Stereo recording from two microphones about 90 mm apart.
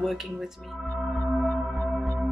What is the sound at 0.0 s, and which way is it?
Speech, centre (ahead or behind).